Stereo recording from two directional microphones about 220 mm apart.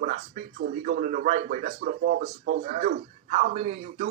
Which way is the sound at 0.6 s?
40° right (ahead or behind).